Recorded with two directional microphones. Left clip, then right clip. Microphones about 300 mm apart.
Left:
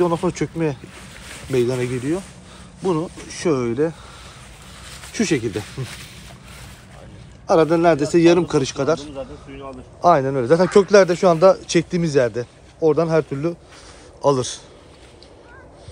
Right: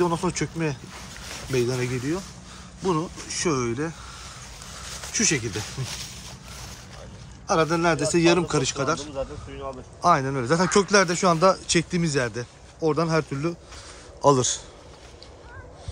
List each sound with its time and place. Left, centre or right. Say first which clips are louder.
0.0 s speech: left 5 dB; centre
5.1 s speech: left 3 dB; centre
7.4 s speech: left 7 dB; centre
9.1 s speech: even; right
10.0 s speech: left 6 dB; centre
14.2 s speech: left 1 dB; centre